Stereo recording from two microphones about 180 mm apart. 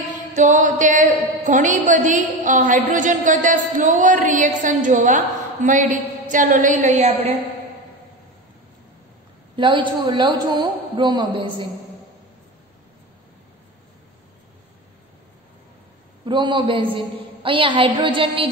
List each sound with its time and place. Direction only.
0.4 s a woman's voice: 45° right (ahead or behind)
9.6 s a woman's voice: 25° right (ahead or behind)
16.3 s a woman's voice: 25° right (ahead or behind)